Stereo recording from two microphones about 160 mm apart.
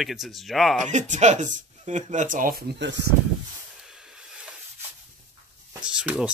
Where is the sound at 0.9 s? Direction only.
50° right (ahead or behind); by 2.9 s 80° right.